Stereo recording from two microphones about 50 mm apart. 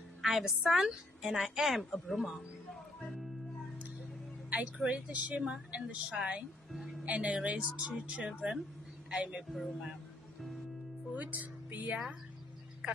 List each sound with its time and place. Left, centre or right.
0.2 s a woman's voice: centre
4.5 s a woman's voice: right
5.4 s a woman's voice: centre
5.8 s a woman's voice: right
6.7 s music: centre
7.1 s a woman's voice: right
7.9 s a woman's voice: centre
9.5 s speech: centre
11.1 s speech: right